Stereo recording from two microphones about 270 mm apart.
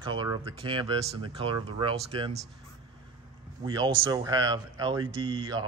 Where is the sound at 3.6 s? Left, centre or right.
Centre.